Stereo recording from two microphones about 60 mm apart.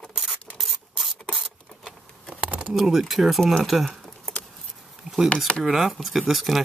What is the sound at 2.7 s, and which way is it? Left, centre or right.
Speech, centre.